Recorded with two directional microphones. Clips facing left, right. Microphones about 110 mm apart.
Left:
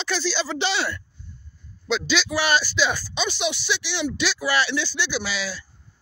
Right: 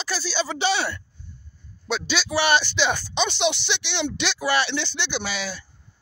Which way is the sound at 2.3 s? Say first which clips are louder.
Right 4 dB; 25° right (ahead or behind).